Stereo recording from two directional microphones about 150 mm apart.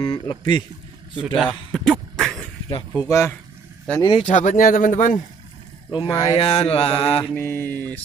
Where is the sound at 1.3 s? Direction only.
Centre (ahead or behind).